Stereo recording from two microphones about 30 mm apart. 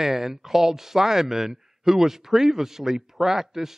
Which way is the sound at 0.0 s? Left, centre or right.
Centre.